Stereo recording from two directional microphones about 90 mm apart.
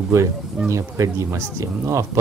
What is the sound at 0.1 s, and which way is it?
Speech, 35° right (ahead or behind).